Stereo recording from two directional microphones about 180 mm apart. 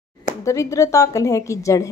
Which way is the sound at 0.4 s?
15° left (ahead or behind).